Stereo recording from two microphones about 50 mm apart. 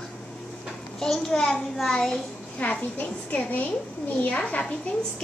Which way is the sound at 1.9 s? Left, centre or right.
Centre.